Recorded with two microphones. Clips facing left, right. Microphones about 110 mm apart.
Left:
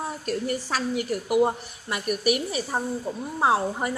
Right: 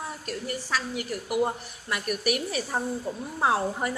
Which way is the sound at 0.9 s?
20° left (ahead or behind).